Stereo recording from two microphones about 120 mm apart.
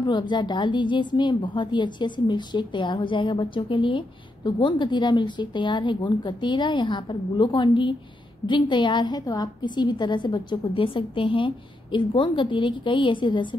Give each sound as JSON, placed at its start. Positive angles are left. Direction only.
{"t": 0.0, "sound": "a woman's voice", "side_deg": 40}